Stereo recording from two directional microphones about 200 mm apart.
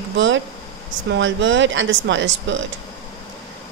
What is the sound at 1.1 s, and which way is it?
Speech, 70° right (ahead or behind).